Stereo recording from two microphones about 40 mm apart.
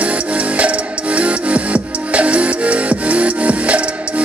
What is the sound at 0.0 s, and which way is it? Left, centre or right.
Music, right.